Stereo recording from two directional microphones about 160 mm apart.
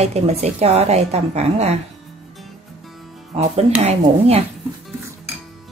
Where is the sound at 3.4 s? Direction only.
40° right (ahead or behind).